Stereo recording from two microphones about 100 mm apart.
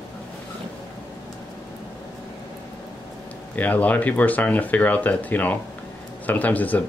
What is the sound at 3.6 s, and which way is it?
Speech, 15° left (ahead or behind).